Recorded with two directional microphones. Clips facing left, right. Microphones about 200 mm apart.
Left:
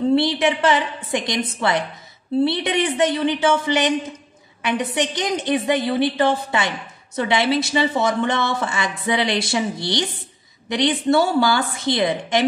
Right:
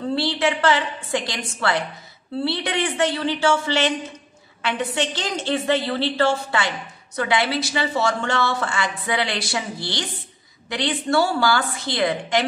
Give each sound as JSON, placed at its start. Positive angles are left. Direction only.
{"t": 0.0, "sound": "a woman's voice", "side_deg": 20}